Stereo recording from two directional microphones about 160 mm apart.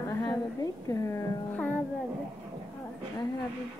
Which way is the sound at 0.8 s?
20° left (ahead or behind).